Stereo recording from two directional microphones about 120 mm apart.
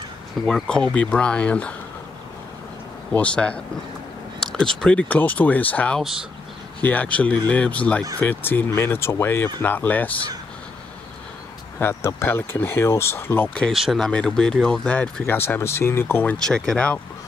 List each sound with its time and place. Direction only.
0.5 s speech: 5° left (ahead or behind)
3.1 s speech: 10° left (ahead or behind)
11.8 s speech: 20° left (ahead or behind)
13.7 s speech: centre (ahead or behind); by 16.3 s 15° left (ahead or behind)
16.4 s speech: 5° left (ahead or behind)